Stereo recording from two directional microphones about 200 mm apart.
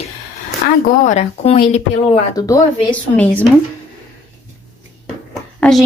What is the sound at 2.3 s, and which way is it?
Speech, 15° left (ahead or behind).